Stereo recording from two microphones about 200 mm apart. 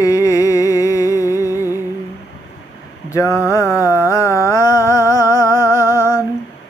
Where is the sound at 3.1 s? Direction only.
15° left (ahead or behind).